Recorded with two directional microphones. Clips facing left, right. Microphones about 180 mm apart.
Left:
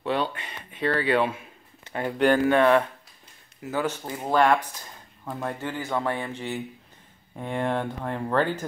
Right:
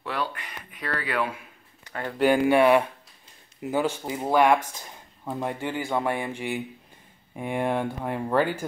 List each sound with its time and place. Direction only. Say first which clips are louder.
0.0 s a sound: left 4 dB; 25° left (ahead or behind)
1.9 s speech: left 4 dB; 20° left (ahead or behind)
2.1 s speech: right 1 dB; 10° right (ahead or behind)